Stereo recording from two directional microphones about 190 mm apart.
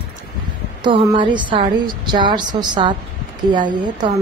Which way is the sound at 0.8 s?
25° right (ahead or behind).